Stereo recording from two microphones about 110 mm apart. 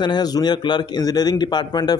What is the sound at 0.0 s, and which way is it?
A man's voice, 40° left (ahead or behind).